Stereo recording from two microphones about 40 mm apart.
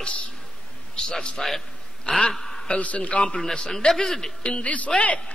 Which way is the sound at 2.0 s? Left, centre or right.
Left.